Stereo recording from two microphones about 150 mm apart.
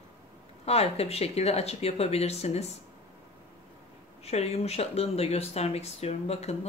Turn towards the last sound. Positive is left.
turn(degrees=45)  # may be behind; listen again after turning